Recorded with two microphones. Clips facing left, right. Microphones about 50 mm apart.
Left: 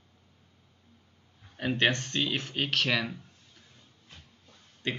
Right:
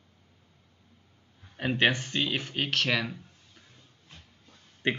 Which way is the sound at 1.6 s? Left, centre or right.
Centre.